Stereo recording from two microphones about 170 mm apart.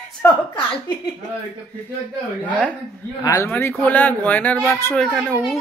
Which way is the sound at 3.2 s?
15° left (ahead or behind).